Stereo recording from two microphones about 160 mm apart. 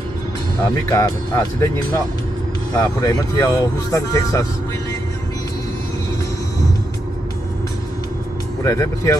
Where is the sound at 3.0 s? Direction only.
20° left (ahead or behind).